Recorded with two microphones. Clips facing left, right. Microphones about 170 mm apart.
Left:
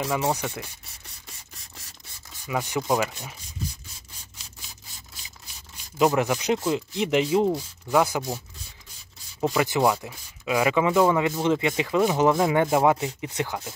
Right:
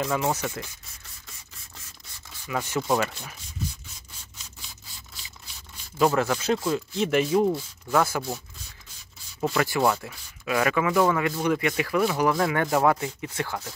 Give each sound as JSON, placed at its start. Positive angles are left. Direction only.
{"t": 0.0, "sound": "speech", "side_deg": 10}
{"t": 2.4, "sound": "speech", "side_deg": 15}
{"t": 5.9, "sound": "speech", "side_deg": 15}
{"t": 9.4, "sound": "speech", "side_deg": 15}